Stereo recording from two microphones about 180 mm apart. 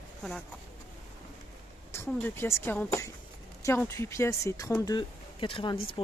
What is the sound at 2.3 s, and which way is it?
Speech, 10° left (ahead or behind).